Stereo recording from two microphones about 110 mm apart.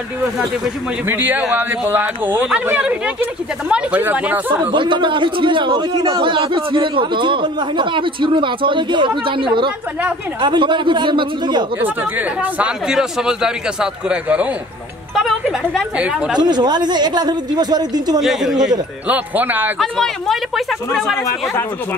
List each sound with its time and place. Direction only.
1.0 s speech: 15° right (ahead or behind)
4.7 s a man's voice: 50° right (ahead or behind)
11.8 s speech: 15° right (ahead or behind)
16.3 s speech: 40° right (ahead or behind)
18.2 s speech: 5° right (ahead or behind)
19.8 s speech: centre (ahead or behind)